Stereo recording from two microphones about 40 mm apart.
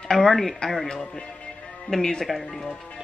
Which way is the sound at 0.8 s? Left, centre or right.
Centre.